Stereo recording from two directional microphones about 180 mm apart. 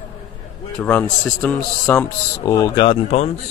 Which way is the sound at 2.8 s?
30° left (ahead or behind).